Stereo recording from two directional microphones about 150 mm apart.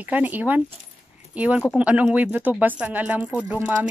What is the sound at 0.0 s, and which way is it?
Speech, 10° right (ahead or behind).